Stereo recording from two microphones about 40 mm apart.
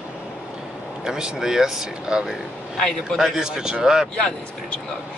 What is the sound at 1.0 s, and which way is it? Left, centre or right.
Speech, centre.